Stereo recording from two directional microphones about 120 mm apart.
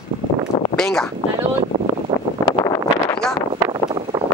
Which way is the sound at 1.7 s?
55° right (ahead or behind).